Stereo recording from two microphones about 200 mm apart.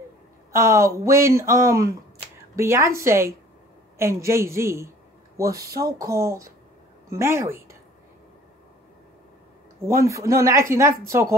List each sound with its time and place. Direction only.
0.5 s speech: 15° right (ahead or behind)
10.0 s speech: 15° right (ahead or behind)